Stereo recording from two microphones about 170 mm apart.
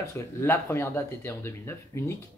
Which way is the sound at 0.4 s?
15° left (ahead or behind).